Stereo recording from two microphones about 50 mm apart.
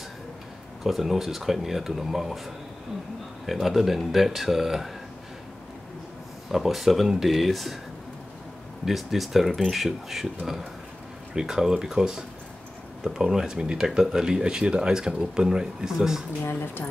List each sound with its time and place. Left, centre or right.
0.8 s speech: centre
6.5 s speech: centre
8.8 s speech: centre
13.3 s speech: centre
16.5 s a woman's voice: left